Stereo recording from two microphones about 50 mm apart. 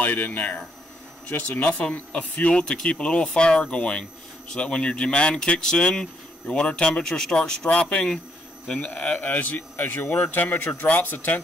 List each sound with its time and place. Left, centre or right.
0.0 s speech: left
2.6 s speech: centre; by 11.4 s left